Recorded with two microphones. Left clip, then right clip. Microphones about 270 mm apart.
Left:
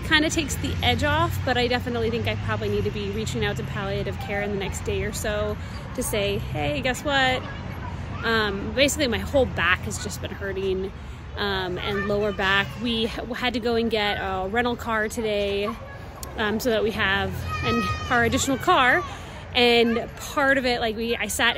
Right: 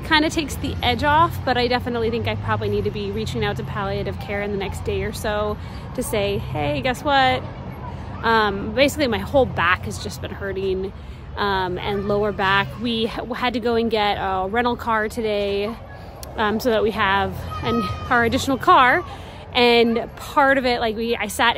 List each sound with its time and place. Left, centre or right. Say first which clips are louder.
0.1 s a woman's voice: right 3 dB; centre